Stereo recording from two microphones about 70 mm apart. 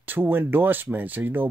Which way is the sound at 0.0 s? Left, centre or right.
Right.